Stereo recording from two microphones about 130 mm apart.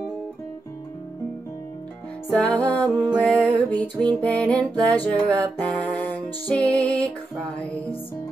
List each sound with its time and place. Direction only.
2.3 s music: 10° left (ahead or behind)
4.7 s music: 30° right (ahead or behind)
5.0 s music: 10° left (ahead or behind)